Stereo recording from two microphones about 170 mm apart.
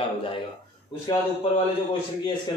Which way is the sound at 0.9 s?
30° left (ahead or behind).